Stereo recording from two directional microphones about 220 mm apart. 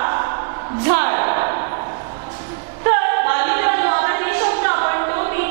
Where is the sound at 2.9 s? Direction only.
15° right (ahead or behind).